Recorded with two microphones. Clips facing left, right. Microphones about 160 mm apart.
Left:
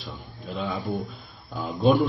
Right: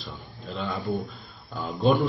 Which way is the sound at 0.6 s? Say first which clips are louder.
Even; 5° left (ahead or behind).